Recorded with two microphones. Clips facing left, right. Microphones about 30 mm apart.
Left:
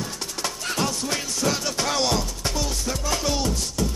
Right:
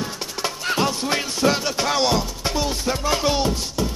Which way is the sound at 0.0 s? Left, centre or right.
Right.